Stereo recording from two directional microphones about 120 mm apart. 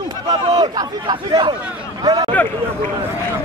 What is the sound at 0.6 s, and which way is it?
Speech, 35° right (ahead or behind).